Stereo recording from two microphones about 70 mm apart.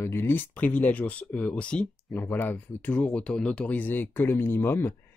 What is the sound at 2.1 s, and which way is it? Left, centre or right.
Speech, left.